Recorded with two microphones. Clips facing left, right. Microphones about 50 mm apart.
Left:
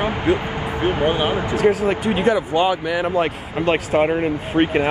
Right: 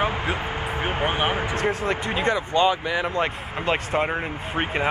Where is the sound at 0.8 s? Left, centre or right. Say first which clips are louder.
Left 5 dB; right.